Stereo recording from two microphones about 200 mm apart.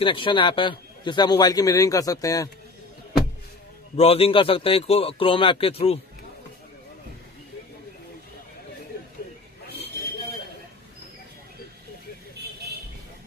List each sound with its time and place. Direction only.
0.0 s a man's voice: 25° left (ahead or behind)
3.9 s a man's voice: 30° left (ahead or behind)